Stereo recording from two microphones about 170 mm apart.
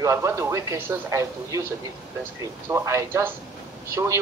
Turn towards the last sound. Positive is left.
turn(degrees=-15)  # may be behind; listen again after turning